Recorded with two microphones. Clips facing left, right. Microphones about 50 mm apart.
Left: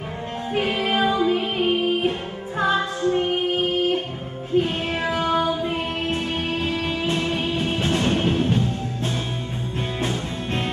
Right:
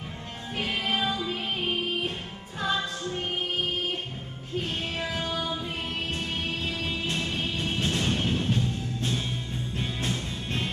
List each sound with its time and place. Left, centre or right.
0.6 s music: left
7.6 s music: left
9.8 s music: centre